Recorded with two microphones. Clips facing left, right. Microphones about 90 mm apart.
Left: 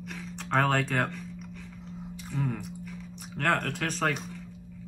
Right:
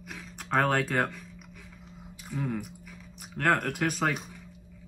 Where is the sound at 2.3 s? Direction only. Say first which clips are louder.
Even; centre (ahead or behind).